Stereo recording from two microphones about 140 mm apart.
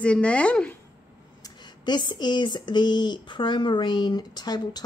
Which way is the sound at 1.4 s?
30° left (ahead or behind).